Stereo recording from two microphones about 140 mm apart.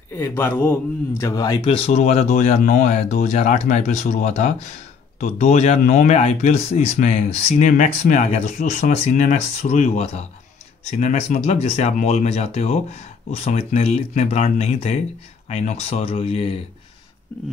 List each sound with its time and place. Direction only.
0.1 s speech: 15° left (ahead or behind)
1.7 s speech: 45° left (ahead or behind)